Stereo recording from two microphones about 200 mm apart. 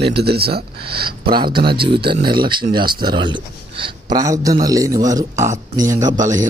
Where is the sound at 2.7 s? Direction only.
25° right (ahead or behind).